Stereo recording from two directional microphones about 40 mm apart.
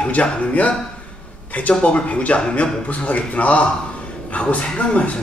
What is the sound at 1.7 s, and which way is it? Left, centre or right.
Speech, left.